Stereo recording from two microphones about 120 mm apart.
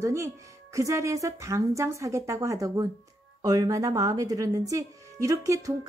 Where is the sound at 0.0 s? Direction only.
25° right (ahead or behind).